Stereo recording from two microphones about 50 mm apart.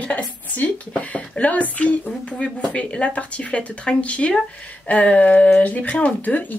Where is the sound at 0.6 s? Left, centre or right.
Left.